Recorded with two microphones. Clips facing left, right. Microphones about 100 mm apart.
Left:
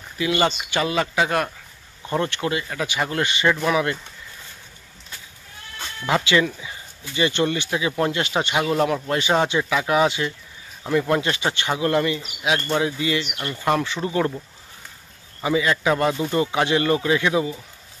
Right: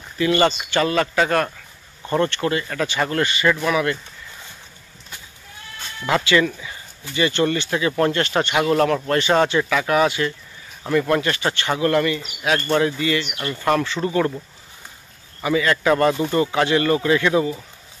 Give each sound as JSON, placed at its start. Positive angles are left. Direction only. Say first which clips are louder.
{"t": 0.2, "sound": "speech", "louder": "right 3 dB", "side_deg": 10}
{"t": 6.0, "sound": "speech", "louder": "right 2 dB", "side_deg": 20}
{"t": 15.4, "sound": "speech", "louder": "right 2 dB", "side_deg": 20}